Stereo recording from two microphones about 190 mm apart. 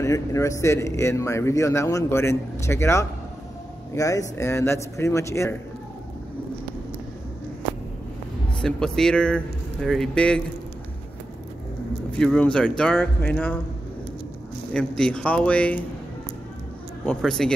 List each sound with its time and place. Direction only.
0.0 s speech: 15° left (ahead or behind)
8.5 s speech: 5° left (ahead or behind)
12.2 s speech: 5° left (ahead or behind)
14.7 s speech: 5° left (ahead or behind)
17.0 s speech: 5° left (ahead or behind)